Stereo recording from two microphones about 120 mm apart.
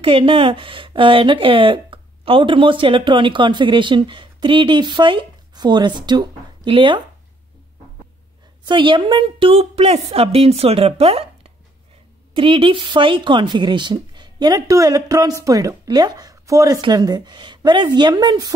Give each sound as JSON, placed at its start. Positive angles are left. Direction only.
{"t": 0.0, "sound": "speech", "side_deg": -45}
{"t": 8.6, "sound": "a woman's voice", "side_deg": -40}